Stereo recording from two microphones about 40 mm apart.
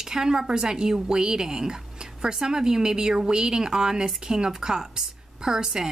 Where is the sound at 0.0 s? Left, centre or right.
Centre.